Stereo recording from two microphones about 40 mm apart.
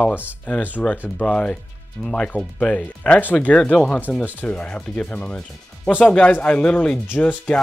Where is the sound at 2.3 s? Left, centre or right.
Right.